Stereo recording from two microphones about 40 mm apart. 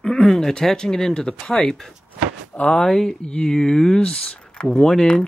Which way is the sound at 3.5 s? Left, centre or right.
Centre.